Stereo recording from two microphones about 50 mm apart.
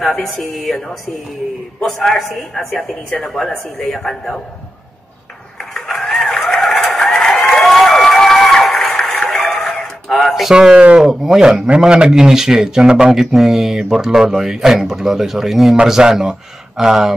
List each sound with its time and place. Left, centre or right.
0.0 s a woman's voice: centre
1.8 s a woman's voice: centre
5.8 s a sound: centre
9.5 s tick: centre
10.5 s speech: centre
11.1 s speech: centre